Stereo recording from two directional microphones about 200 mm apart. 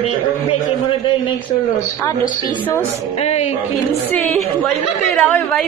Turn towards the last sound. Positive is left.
turn(degrees=10)  # may be behind; listen again after turning